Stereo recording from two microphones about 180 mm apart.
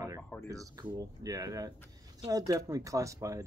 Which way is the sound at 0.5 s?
20° right (ahead or behind).